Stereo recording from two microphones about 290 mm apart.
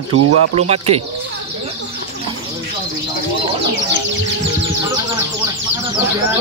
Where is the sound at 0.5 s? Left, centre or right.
Right.